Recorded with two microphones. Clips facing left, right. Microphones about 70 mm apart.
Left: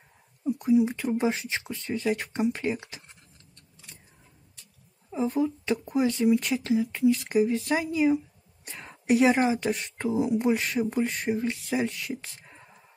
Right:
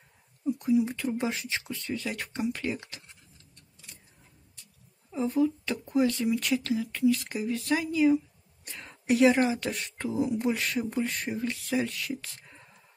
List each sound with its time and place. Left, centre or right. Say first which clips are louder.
0.5 s speech: left 3 dB; left
5.1 s a woman's voice: even; centre